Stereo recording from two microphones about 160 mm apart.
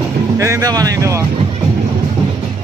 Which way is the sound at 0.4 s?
20° right (ahead or behind).